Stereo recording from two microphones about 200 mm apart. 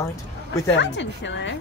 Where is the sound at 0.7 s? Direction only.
65° left (ahead or behind).